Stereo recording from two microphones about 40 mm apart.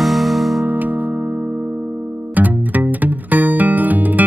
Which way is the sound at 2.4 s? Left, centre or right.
Right.